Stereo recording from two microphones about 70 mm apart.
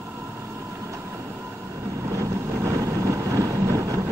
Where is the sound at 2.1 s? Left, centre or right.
Right.